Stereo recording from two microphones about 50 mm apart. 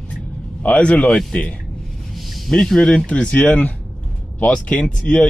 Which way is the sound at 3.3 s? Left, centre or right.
Left.